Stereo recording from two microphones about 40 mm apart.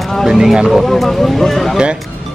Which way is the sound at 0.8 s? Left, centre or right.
Centre.